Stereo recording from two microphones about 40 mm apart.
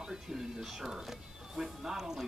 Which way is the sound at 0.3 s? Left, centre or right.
Centre.